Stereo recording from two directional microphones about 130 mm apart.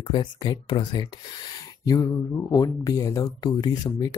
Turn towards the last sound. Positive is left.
turn(degrees=30)  # may be behind; listen again after turning